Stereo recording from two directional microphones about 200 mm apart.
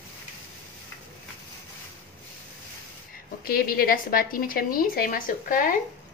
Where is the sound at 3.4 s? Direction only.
50° left (ahead or behind).